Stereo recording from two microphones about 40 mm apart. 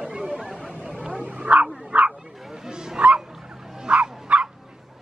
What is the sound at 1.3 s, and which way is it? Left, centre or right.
Bow-wow, right.